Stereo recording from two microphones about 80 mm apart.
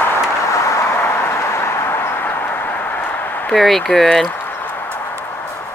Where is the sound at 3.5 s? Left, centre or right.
Centre.